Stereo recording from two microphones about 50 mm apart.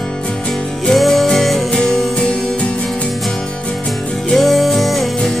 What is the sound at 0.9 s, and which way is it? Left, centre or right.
Music, centre.